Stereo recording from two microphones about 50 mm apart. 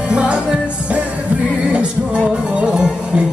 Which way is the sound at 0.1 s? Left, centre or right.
Right.